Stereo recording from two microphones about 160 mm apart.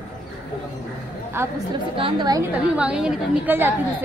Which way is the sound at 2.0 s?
30° right (ahead or behind).